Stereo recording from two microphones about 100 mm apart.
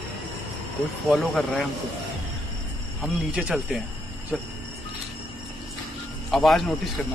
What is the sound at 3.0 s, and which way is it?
Speech, 5° right (ahead or behind).